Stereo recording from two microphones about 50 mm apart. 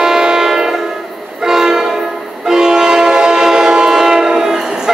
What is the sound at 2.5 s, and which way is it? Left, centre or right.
Train, centre.